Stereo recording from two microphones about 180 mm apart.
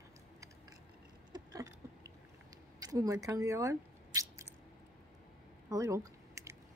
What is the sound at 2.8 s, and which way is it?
Squish, 20° right (ahead or behind).